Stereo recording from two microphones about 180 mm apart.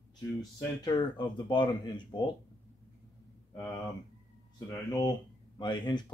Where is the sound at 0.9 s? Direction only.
25° left (ahead or behind).